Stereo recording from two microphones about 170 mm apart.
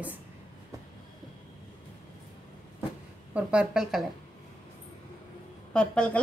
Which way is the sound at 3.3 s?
5° right (ahead or behind).